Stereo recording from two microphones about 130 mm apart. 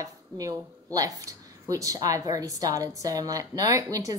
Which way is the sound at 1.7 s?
25° right (ahead or behind).